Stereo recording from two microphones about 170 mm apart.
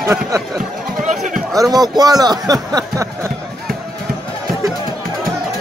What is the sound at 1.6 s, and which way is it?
A man's voice, 25° right (ahead or behind).